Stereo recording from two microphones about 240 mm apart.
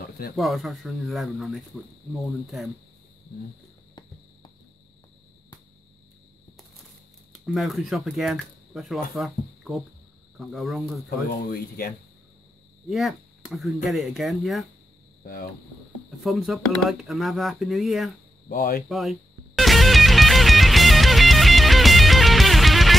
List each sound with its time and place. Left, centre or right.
0.4 s speech: centre
7.3 s speech: centre
11.2 s speech: left
12.9 s speech: centre
16.2 s speech: centre
18.5 s speech: left
18.9 s music: centre